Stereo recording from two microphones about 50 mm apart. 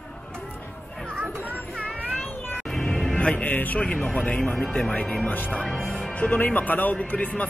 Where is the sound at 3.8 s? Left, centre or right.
Left.